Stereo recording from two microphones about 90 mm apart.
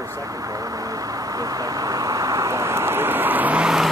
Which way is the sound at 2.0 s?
40° right (ahead or behind).